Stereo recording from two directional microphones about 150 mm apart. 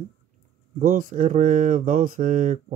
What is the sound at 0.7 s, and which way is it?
Speech, 65° right (ahead or behind).